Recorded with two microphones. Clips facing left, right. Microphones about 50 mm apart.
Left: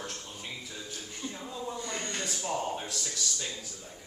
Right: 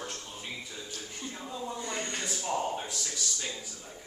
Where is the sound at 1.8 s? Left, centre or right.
Right.